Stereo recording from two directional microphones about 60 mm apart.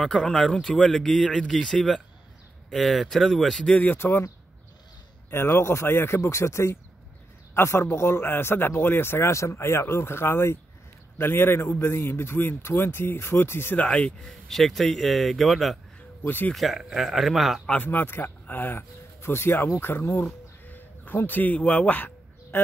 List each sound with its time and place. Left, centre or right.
0.0 s speech: centre
3.6 s a man's voice: left
5.3 s a man's voice: left
13.8 s speech: centre
14.2 s speech: centre
16.3 s a man's voice: left
16.5 s speech: centre
17.8 s speech: left
20.6 s bird: left